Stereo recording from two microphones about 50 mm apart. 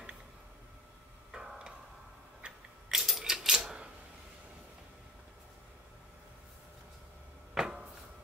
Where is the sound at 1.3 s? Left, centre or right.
Centre.